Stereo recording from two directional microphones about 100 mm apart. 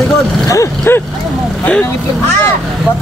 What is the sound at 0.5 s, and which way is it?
Vehicle, 30° left (ahead or behind).